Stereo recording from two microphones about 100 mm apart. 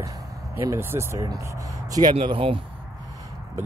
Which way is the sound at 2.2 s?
60° right (ahead or behind).